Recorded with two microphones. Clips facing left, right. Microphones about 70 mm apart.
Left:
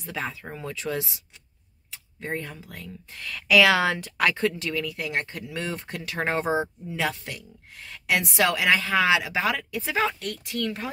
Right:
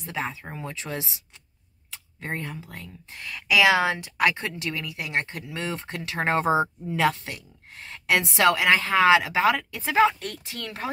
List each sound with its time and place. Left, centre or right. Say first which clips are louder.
0.0 s speech: right 1 dB; right
2.1 s speech: even; right
3.1 s speech: even; right
3.3 s a woman's voice: left 1 dB; centre
4.9 s speech: even; right